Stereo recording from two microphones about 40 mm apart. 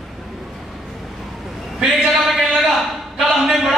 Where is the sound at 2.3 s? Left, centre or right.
Centre.